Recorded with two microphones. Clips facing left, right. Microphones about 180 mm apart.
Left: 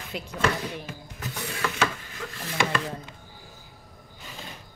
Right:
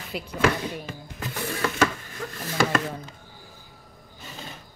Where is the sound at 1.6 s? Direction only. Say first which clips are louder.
Right 2 dB; 40° right (ahead or behind).